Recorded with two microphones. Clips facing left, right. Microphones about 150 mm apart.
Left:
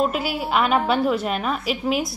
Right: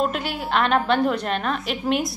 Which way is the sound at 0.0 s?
5° left (ahead or behind).